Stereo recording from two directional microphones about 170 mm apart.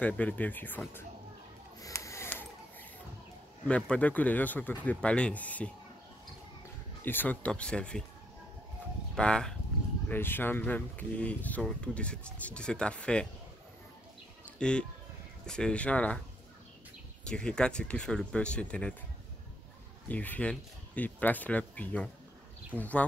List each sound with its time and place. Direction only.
0.0 s speech: 10° left (ahead or behind)
1.8 s a sound: 20° left (ahead or behind)
3.6 s speech: 5° left (ahead or behind)
7.0 s speech: 10° left (ahead or behind)
9.1 s speech: 5° left (ahead or behind)
14.4 s a sound: 5° left (ahead or behind)
15.4 s speech: 5° left (ahead or behind)
17.3 s speech: 5° left (ahead or behind)
20.1 s speech: 10° left (ahead or behind)